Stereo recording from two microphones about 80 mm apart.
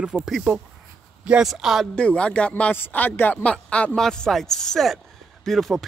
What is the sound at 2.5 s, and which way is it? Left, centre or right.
A man's voice, left.